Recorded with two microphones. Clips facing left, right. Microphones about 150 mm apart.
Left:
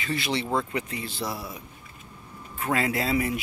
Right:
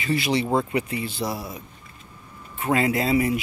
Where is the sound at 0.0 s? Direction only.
5° right (ahead or behind).